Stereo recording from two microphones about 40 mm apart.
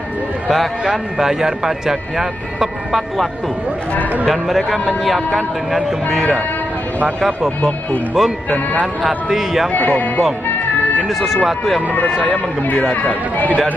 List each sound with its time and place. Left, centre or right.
0.8 s speech: centre
4.3 s a man's voice: centre
8.2 s speech: centre
9.7 s speech: left
11.1 s a man's voice: centre
11.9 s speech: left